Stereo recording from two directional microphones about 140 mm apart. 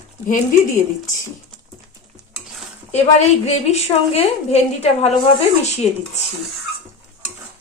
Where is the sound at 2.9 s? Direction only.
50° left (ahead or behind).